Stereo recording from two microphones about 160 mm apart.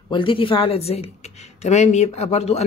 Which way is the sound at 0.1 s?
30° left (ahead or behind).